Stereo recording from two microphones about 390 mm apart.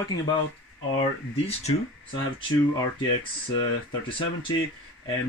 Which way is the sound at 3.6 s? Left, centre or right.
Centre.